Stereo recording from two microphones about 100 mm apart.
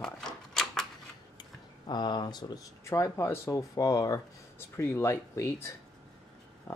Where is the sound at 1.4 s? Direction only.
50° left (ahead or behind).